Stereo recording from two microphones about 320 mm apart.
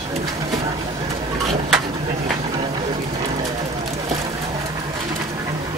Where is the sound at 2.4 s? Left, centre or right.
Centre.